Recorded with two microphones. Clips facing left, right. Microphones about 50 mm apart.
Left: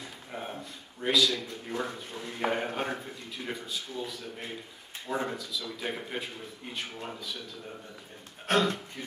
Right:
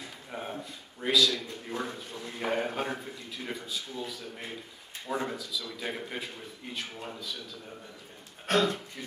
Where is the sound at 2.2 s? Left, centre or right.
Centre.